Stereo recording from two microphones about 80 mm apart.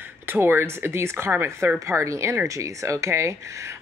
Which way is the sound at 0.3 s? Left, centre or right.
Right.